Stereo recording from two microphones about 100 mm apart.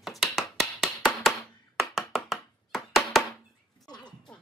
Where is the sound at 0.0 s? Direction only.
Centre (ahead or behind).